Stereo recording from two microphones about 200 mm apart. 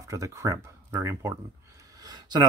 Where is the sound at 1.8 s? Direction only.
20° right (ahead or behind).